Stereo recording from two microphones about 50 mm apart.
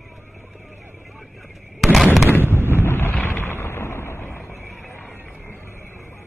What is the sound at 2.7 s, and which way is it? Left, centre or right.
Wind noise, left.